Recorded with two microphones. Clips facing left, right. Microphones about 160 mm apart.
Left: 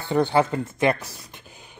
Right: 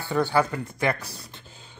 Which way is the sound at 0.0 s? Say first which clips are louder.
Left 3 dB; 20° left (ahead or behind).